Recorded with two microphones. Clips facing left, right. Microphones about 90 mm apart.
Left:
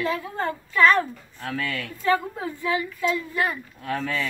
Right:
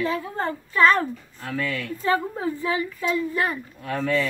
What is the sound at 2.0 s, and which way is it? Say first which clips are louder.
Speech: even; 30° right (ahead or behind).